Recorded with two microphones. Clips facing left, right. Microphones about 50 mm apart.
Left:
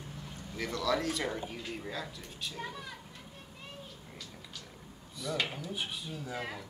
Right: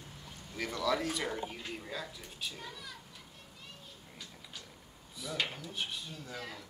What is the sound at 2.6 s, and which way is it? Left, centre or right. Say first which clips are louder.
Speech: left 5 dB; left.